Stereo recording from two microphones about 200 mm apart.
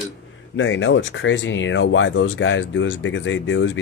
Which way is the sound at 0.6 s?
75° left (ahead or behind).